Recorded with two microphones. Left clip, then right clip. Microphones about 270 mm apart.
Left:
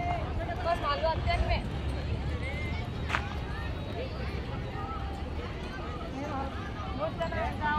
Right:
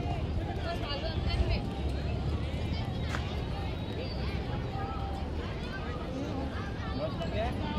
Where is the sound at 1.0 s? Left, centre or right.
Centre.